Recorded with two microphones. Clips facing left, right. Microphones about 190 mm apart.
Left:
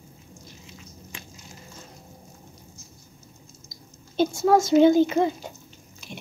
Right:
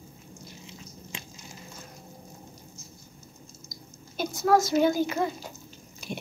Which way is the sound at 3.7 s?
25° left (ahead or behind).